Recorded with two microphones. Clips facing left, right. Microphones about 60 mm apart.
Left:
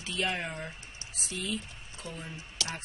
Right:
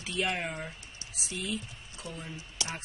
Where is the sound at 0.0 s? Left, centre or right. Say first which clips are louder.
Right 1 dB; centre.